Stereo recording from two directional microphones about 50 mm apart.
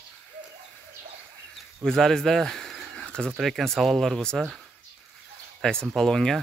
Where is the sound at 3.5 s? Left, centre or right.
Centre.